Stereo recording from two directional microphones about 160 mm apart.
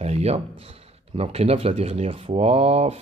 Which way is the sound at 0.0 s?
40° right (ahead or behind).